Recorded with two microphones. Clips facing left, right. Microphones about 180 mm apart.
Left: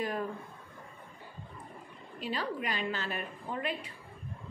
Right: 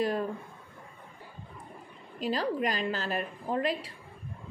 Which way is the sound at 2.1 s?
40° right (ahead or behind).